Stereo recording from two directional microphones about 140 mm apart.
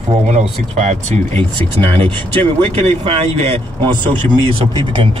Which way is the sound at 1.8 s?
40° right (ahead or behind).